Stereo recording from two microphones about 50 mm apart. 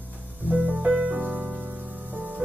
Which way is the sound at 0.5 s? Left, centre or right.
Right.